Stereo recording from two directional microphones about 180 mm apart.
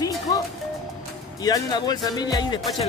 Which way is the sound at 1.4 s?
20° left (ahead or behind).